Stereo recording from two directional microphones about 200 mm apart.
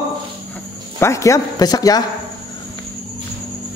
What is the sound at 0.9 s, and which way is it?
Speech, 15° left (ahead or behind).